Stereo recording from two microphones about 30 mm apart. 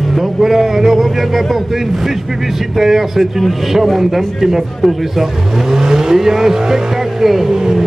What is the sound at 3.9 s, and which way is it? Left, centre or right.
Vehicle, centre.